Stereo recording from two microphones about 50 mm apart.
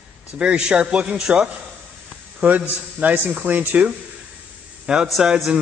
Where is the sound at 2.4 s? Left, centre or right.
Right.